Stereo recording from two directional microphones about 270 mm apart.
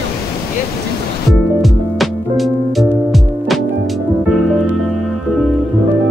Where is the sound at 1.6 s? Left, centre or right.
Centre.